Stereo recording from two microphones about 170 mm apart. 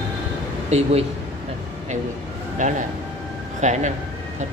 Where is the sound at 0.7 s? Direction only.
40° right (ahead or behind).